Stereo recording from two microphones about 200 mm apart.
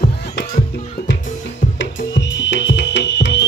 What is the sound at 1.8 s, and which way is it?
Music, 60° left (ahead or behind).